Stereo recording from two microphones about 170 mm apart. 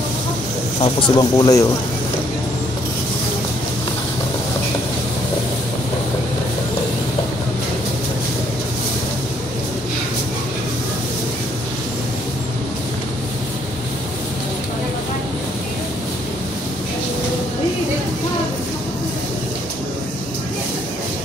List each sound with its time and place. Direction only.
0.7 s speech: 30° left (ahead or behind)